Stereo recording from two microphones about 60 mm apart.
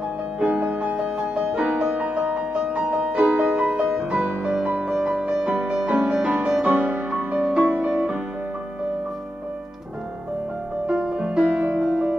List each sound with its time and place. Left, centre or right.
0.4 s music: right
1.9 s music: right
3.7 s music: centre
7.6 s music: right
10.9 s music: centre